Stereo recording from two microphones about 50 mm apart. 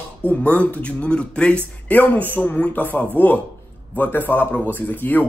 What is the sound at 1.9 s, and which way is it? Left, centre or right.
Speech, left.